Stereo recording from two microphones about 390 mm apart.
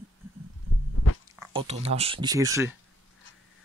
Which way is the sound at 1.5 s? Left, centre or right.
Centre.